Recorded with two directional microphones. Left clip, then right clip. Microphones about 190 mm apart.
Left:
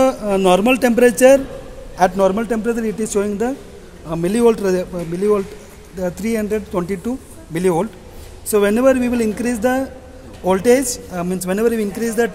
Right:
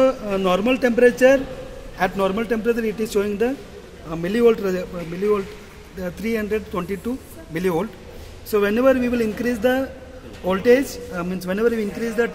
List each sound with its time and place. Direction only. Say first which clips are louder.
0.0 s speech: left 4 dB; 65° left (ahead or behind)
2.0 s a man's voice: left 6 dB; 50° left (ahead or behind)
4.1 s speech: left 2 dB; 55° left (ahead or behind)
5.9 s a man's voice: left 4 dB; 55° left (ahead or behind)